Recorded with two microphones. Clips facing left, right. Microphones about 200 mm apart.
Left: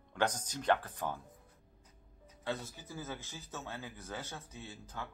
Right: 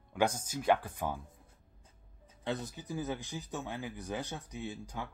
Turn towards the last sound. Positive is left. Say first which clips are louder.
# right 5 dB
turn(degrees=-15)  # may be behind; listen again after turning